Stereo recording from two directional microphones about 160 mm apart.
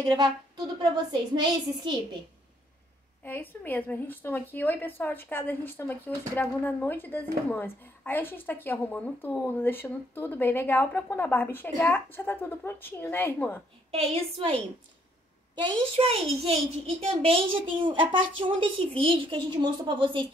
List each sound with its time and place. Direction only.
0.0 s a woman's voice: 30° right (ahead or behind)
3.3 s a woman's voice: 10° left (ahead or behind)
13.9 s a child's voice: 40° right (ahead or behind)
16.0 s a child's voice: 35° right (ahead or behind)